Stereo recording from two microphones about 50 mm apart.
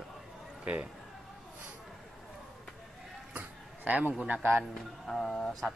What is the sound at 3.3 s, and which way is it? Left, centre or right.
Music, right.